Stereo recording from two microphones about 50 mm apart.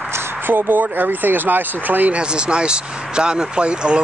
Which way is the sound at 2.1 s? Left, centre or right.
Centre.